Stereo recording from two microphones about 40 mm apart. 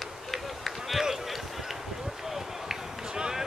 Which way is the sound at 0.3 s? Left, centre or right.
Centre.